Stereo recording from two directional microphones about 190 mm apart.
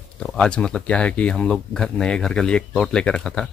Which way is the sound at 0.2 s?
Centre (ahead or behind).